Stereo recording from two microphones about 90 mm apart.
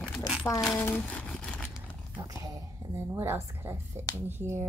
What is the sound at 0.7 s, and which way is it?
Speech, 20° left (ahead or behind).